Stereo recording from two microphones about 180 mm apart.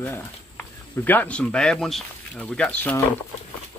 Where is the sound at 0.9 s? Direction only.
10° left (ahead or behind).